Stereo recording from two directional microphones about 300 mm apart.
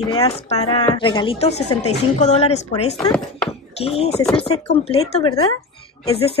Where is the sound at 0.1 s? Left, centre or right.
Centre.